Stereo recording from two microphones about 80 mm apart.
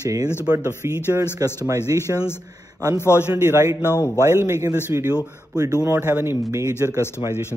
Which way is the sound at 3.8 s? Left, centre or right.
Left.